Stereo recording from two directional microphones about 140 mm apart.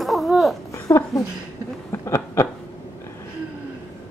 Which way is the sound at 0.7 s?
20° left (ahead or behind).